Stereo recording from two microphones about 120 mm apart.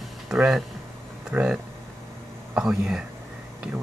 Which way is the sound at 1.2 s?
5° right (ahead or behind).